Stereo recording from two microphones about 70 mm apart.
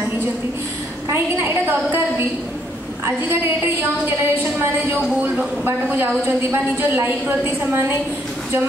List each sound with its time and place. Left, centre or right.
1.1 s a woman's voice: right
3.3 s a woman's voice: right